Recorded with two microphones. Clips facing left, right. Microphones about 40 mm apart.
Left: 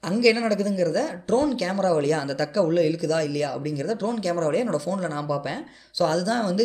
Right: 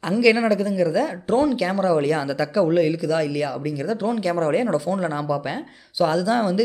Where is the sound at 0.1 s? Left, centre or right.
Centre.